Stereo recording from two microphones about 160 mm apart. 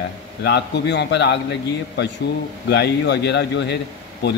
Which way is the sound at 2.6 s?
90° left.